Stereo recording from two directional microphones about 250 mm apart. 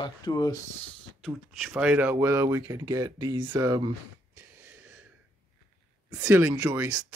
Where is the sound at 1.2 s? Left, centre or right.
Centre.